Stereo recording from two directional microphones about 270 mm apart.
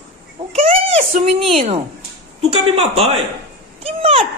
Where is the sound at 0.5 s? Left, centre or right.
Right.